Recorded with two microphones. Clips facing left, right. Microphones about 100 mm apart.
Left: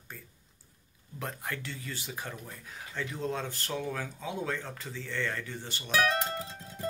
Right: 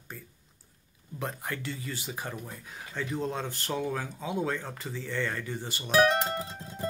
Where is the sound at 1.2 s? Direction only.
5° right (ahead or behind).